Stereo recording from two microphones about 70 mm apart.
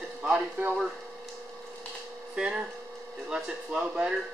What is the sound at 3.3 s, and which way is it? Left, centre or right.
Speech, centre.